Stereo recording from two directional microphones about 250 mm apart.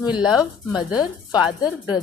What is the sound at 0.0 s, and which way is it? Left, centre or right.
A woman's voice, centre.